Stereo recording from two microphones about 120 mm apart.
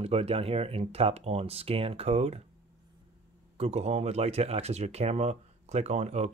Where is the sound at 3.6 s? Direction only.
60° right (ahead or behind).